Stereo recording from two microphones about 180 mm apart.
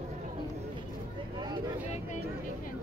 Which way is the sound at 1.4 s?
25° right (ahead or behind).